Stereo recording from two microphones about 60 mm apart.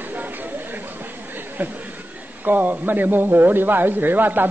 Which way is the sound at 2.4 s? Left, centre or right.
Right.